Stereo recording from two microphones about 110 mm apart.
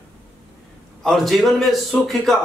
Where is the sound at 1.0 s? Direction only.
Centre (ahead or behind).